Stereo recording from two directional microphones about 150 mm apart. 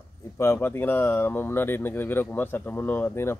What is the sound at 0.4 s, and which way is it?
Speech, 15° left (ahead or behind).